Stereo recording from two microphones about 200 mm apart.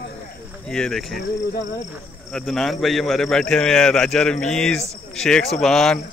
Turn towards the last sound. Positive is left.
turn(degrees=0)  # may be behind; listen again after turning